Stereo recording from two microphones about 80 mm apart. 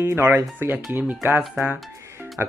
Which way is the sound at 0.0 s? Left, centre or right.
Right.